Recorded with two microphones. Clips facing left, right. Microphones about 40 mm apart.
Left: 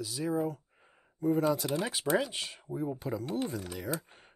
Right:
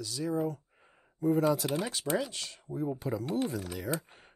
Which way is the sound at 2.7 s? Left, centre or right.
Centre.